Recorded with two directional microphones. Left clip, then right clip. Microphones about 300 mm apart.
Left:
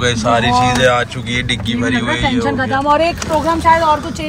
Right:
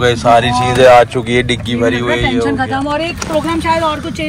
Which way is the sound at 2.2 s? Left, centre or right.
Left.